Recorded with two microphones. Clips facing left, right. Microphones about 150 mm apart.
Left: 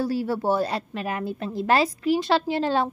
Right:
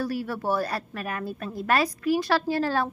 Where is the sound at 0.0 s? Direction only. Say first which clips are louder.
Left 4 dB; 25° left (ahead or behind).